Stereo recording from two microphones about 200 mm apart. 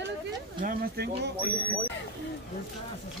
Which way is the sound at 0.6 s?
50° right (ahead or behind).